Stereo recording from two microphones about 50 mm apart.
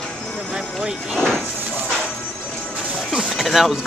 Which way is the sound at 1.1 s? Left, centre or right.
Centre.